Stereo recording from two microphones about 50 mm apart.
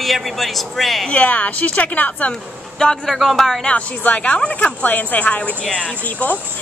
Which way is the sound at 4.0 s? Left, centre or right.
Left.